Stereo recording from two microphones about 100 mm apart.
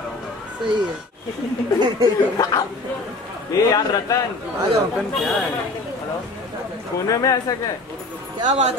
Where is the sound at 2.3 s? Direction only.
35° left (ahead or behind).